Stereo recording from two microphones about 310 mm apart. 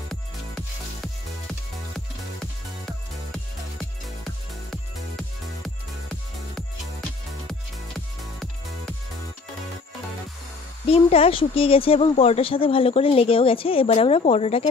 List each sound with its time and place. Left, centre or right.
1.0 s music: centre
10.9 s speech: centre